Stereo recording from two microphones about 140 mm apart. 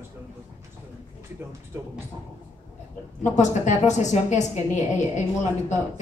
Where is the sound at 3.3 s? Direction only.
60° left (ahead or behind).